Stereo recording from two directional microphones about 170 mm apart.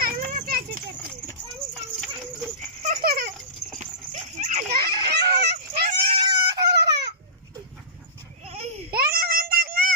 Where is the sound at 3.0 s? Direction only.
60° right (ahead or behind).